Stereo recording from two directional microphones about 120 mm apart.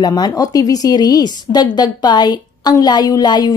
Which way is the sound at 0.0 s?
35° left (ahead or behind).